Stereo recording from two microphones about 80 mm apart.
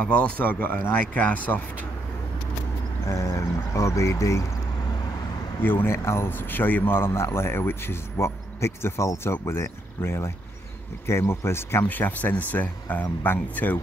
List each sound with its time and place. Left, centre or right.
0.0 s speech: centre
3.1 s speech: left
5.6 s speech: left